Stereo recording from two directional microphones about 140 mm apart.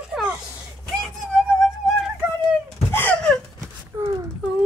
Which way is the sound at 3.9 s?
25° right (ahead or behind).